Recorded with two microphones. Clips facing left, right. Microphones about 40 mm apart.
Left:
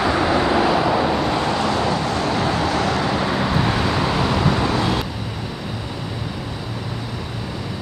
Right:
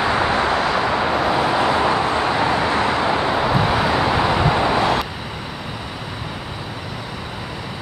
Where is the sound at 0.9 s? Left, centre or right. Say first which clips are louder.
Right 1 dB; centre.